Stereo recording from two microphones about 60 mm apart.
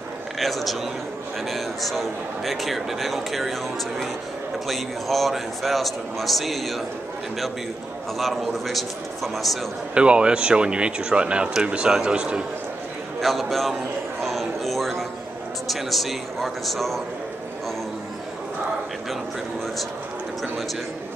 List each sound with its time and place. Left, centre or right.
0.4 s a man's voice: centre
4.6 s a man's voice: centre
8.2 s a man's voice: centre
9.9 s speech: centre
13.2 s a man's voice: centre
14.2 s a sound: centre
15.7 s a man's voice: centre